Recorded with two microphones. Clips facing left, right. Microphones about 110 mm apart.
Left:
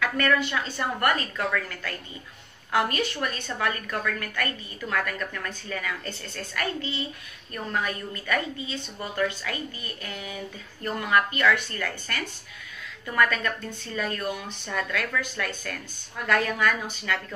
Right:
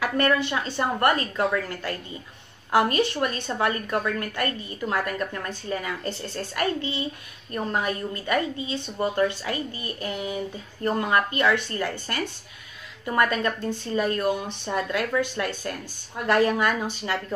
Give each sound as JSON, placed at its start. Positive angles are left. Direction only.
{"t": 0.0, "sound": "a woman's voice", "side_deg": -25}